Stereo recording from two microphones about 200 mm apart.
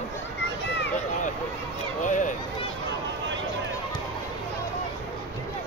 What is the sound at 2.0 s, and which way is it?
Speech, 40° left (ahead or behind).